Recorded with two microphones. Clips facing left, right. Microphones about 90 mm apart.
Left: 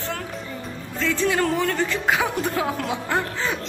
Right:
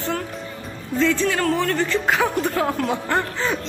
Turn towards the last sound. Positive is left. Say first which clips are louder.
# right 2 dB
turn(degrees=0)  # may be behind; listen again after turning